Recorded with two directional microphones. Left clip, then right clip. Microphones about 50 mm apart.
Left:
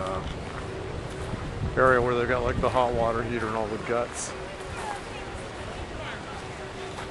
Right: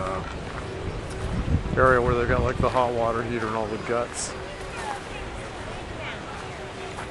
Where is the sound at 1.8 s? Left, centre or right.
Centre.